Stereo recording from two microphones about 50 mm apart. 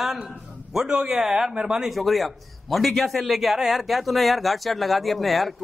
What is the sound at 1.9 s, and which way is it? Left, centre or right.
A man's voice, centre.